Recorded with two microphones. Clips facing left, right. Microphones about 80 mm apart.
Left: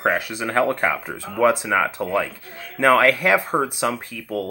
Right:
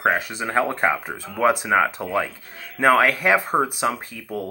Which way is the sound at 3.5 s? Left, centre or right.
Centre.